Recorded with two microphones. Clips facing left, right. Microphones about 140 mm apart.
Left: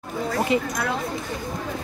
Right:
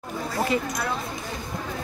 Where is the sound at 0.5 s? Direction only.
20° left (ahead or behind).